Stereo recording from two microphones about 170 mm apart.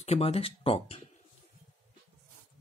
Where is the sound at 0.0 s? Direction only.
35° left (ahead or behind).